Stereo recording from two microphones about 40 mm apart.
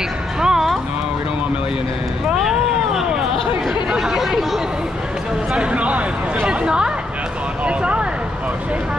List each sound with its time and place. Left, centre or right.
0.4 s music: centre
2.3 s cat: centre
3.9 s speech: centre
5.6 s speech: right
6.6 s speech: right
7.6 s a sound: right